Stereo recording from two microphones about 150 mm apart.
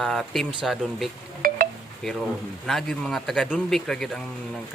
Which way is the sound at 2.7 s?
Centre (ahead or behind).